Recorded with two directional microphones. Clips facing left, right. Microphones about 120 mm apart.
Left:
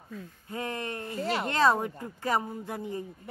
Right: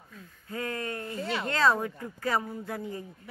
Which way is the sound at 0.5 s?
20° left (ahead or behind).